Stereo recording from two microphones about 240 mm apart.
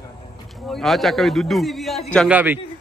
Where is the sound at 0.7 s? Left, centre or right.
Centre.